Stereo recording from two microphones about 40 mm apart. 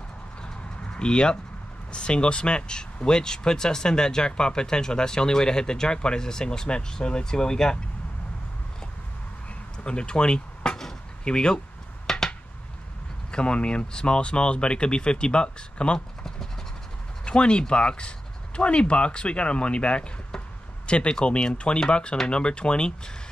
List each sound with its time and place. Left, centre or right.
0.9 s speech: left
9.8 s speech: left
12.1 s a sound: centre
13.3 s speech: left